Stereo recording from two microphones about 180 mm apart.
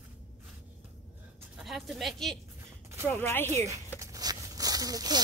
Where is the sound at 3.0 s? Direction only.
15° left (ahead or behind).